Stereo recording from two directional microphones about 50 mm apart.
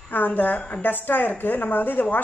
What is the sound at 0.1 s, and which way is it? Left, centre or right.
A woman's voice, left.